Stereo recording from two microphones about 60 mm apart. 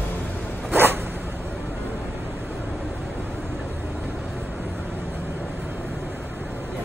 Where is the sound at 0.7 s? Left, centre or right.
Right.